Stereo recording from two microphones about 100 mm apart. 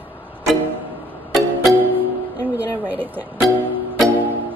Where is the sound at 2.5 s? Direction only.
20° right (ahead or behind).